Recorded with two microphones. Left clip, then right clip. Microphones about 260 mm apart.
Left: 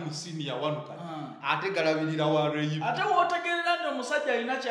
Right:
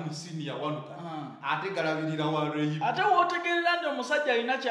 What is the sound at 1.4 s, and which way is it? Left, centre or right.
A man's voice, left.